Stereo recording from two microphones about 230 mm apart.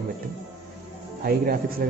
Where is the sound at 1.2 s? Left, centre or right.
Right.